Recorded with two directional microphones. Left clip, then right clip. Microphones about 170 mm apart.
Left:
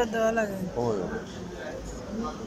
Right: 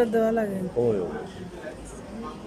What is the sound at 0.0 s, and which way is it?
Speech, 35° right (ahead or behind).